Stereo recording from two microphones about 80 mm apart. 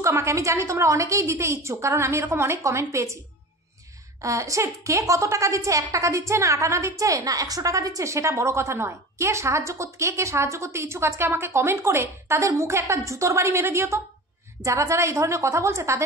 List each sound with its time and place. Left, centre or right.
0.0 s a woman's voice: right
4.2 s a woman's voice: right